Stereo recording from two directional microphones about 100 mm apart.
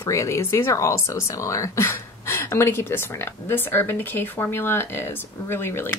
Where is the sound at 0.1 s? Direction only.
30° left (ahead or behind).